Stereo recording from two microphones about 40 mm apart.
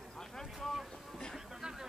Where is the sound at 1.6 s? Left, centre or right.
Centre.